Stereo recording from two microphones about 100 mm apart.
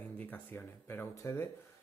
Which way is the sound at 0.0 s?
15° left (ahead or behind).